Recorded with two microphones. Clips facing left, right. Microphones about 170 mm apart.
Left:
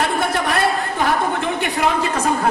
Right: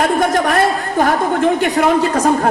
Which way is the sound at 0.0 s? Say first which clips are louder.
Right 5 dB; 45° right (ahead or behind).